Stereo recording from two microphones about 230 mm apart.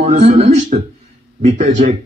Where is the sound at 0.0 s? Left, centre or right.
Right.